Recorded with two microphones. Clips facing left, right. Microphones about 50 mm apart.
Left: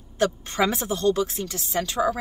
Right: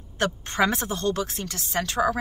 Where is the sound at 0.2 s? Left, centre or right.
Right.